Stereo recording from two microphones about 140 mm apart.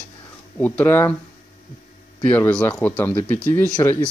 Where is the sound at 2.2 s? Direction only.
15° left (ahead or behind).